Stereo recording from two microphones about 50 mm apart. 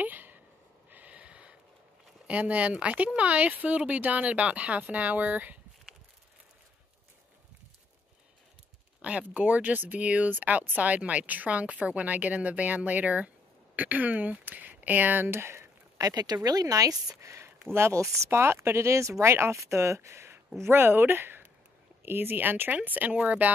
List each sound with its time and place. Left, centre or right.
0.0 s a sound: right
2.2 s speech: right
9.0 s speech: right
17.2 s speech: right
18.4 s speech: right
20.6 s speech: right